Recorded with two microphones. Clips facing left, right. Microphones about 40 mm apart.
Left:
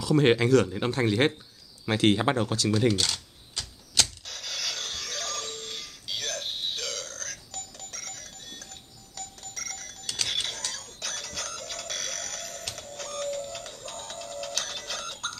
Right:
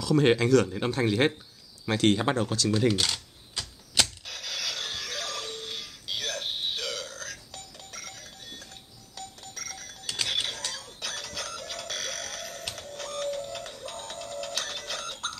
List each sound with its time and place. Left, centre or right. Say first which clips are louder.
0.0 s speech: left 1 dB; centre
2.9 s typewriter: even; centre
9.1 s cash register: even; centre